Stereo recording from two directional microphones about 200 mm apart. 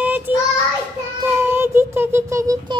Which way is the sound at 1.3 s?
10° right (ahead or behind).